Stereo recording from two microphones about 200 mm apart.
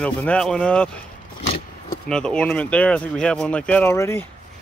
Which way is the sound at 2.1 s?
5° left (ahead or behind).